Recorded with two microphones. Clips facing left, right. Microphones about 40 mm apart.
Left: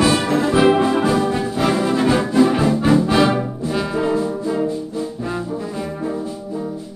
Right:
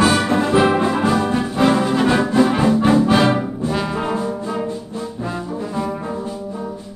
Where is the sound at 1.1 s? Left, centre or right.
Right.